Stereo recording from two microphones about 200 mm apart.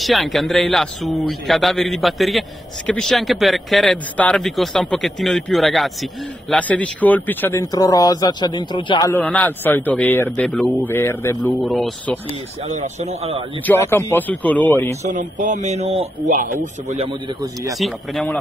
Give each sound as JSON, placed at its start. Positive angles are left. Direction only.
{"t": 0.0, "sound": "a man's voice", "side_deg": 0}
{"t": 9.1, "sound": "a man's voice", "side_deg": 10}
{"t": 11.6, "sound": "speech", "side_deg": 0}
{"t": 12.7, "sound": "speech", "side_deg": -35}
{"t": 13.7, "sound": "a man's voice", "side_deg": 10}
{"t": 15.0, "sound": "speech", "side_deg": -40}
{"t": 17.7, "sound": "speech", "side_deg": 0}